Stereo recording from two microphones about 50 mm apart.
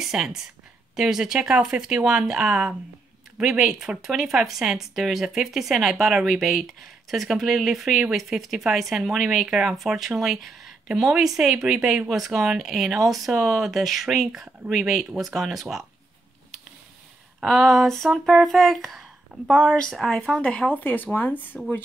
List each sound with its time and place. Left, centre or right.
0.0 s a woman's voice: centre
17.5 s speech: centre
19.5 s speech: centre
20.4 s speech: left
20.8 s speech: left